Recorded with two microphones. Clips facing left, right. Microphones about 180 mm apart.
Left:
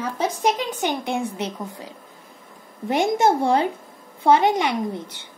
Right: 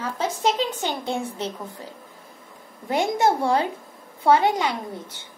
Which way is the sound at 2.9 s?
25° left (ahead or behind).